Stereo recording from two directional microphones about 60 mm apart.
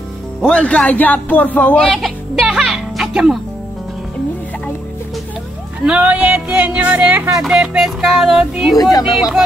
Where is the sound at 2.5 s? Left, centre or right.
Centre.